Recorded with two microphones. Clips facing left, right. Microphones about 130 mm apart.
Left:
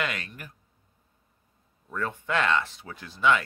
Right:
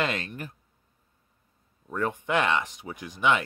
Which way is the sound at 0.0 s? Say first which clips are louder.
Right 3 dB; 25° right (ahead or behind).